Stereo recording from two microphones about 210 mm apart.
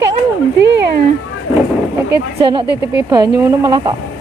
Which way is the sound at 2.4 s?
25° right (ahead or behind).